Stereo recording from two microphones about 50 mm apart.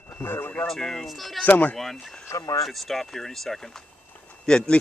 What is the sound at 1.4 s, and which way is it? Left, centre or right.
Speech, left.